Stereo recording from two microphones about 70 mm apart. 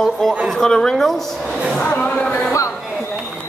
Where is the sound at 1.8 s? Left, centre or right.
Centre.